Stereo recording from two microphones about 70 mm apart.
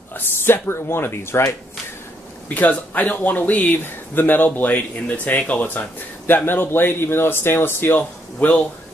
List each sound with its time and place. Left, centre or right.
0.1 s speech: left
2.5 s speech: left